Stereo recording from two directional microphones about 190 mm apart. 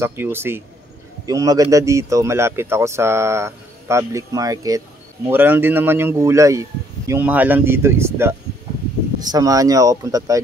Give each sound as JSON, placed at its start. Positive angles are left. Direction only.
{"t": 0.0, "sound": "a man's voice", "side_deg": -10}